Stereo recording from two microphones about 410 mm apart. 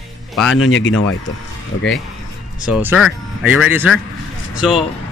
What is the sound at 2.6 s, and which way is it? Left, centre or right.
Speech, centre.